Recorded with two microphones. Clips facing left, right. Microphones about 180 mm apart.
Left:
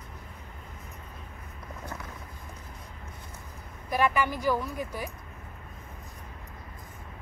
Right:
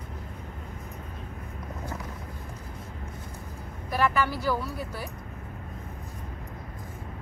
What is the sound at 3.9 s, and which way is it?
Speech, 15° left (ahead or behind).